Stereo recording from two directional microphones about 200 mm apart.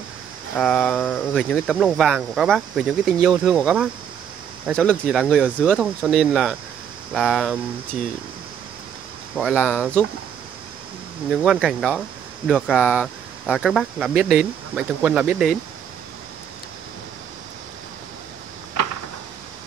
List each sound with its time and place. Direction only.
0.6 s speech: 5° left (ahead or behind)
9.3 s speech: 5° right (ahead or behind)
9.6 s speech: 5° left (ahead or behind)
11.2 s speech: 5° right (ahead or behind)